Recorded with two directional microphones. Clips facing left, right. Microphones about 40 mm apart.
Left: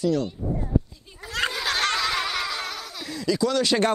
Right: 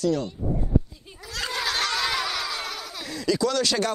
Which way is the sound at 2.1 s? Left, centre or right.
Left.